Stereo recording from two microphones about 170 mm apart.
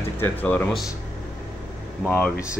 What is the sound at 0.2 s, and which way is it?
Speech, 10° left (ahead or behind).